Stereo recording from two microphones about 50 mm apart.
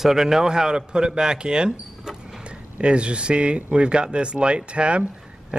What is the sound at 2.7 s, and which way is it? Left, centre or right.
Speech, right.